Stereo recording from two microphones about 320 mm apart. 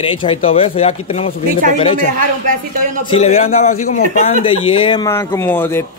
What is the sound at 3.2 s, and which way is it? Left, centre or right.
A man's voice, centre.